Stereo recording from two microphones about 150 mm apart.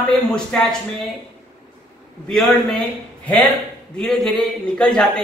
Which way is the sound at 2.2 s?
5° left (ahead or behind).